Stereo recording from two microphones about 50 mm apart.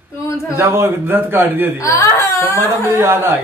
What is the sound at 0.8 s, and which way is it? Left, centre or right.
Speech, right.